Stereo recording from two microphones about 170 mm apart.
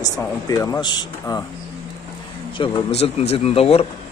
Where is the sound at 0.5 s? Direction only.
20° left (ahead or behind).